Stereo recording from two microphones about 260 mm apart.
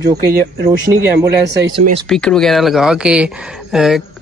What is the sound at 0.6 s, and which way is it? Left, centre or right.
Speech, centre.